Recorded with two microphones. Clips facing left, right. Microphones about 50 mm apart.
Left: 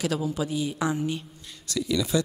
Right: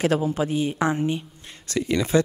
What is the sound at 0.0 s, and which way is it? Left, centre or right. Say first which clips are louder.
A woman's voice: right 5 dB; right.